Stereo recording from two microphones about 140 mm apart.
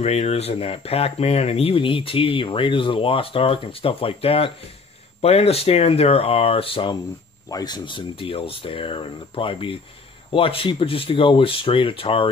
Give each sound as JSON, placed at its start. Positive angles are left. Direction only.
{"t": 0.0, "sound": "speech", "side_deg": 50}
{"t": 7.4, "sound": "speech", "side_deg": 30}